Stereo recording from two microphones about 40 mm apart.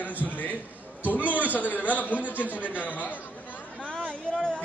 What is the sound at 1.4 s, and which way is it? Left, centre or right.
A man's voice, left.